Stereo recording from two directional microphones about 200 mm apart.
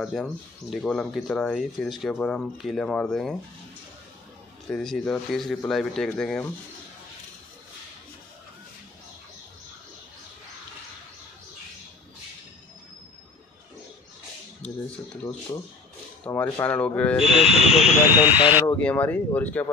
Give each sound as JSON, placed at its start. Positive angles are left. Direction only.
{"t": 0.0, "sound": "speech", "side_deg": 0}
{"t": 4.6, "sound": "speech", "side_deg": 5}
{"t": 16.3, "sound": "speech", "side_deg": 15}
{"t": 17.3, "sound": "speech", "side_deg": 30}
{"t": 18.0, "sound": "speech", "side_deg": -10}
{"t": 18.8, "sound": "speech", "side_deg": 5}